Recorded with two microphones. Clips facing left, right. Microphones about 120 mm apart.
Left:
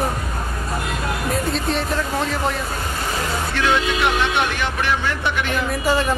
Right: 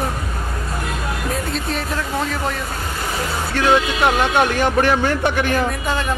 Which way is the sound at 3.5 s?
40° right (ahead or behind).